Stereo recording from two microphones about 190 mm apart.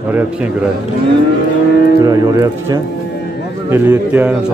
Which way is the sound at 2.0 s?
20° right (ahead or behind).